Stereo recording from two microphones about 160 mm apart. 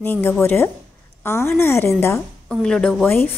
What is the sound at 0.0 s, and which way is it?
A woman's voice, 15° left (ahead or behind).